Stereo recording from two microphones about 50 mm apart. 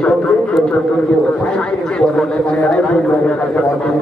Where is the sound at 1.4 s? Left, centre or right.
Centre.